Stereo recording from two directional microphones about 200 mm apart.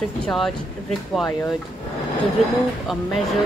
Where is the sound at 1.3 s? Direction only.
15° left (ahead or behind).